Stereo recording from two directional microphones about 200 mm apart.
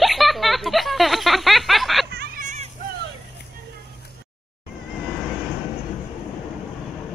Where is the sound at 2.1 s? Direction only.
50° right (ahead or behind).